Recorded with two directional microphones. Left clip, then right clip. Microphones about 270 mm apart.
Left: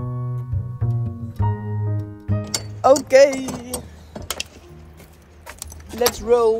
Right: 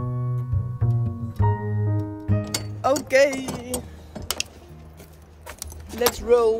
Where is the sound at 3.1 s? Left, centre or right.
Centre.